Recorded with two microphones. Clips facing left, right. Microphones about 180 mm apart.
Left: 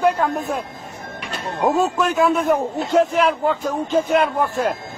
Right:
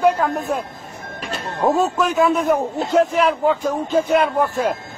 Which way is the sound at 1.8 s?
Centre (ahead or behind).